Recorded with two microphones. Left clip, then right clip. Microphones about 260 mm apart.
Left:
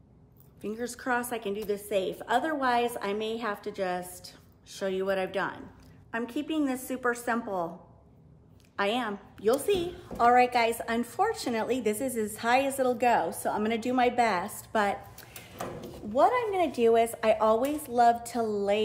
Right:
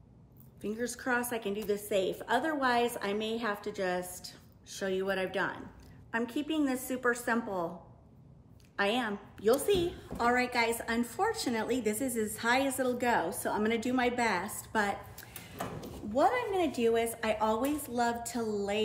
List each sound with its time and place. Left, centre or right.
0.6 s a woman's voice: centre
8.7 s a woman's voice: centre